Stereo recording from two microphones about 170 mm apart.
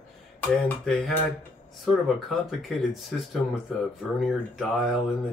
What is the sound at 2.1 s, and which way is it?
Speech, centre (ahead or behind).